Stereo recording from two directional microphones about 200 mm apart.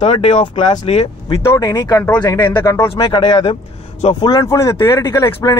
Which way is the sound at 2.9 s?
25° left (ahead or behind).